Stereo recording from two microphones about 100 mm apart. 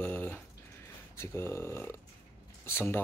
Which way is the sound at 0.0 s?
15° left (ahead or behind).